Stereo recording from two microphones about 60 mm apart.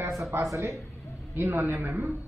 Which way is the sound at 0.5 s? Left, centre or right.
Right.